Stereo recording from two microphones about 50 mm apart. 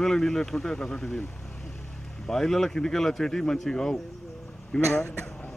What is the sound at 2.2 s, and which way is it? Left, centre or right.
Speech, centre.